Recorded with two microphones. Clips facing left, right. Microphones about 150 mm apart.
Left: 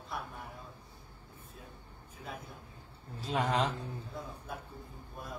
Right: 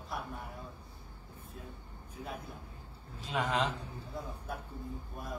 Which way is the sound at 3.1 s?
35° left (ahead or behind).